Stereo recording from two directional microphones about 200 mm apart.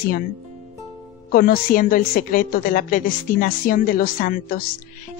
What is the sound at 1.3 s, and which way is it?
A woman's voice, 45° left (ahead or behind).